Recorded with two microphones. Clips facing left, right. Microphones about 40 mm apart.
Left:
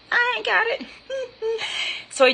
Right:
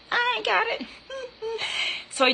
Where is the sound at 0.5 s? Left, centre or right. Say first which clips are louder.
Left 4 dB; left.